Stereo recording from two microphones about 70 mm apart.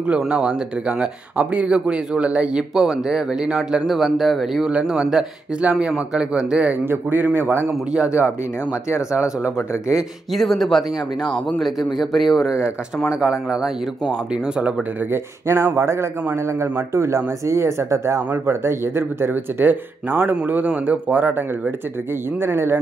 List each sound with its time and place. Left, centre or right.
0.3 s speech: centre
5.1 s speech: centre
6.7 s speech: right
10.3 s speech: centre
12.4 s speech: left
13.1 s speech: centre
15.4 s a man's voice: right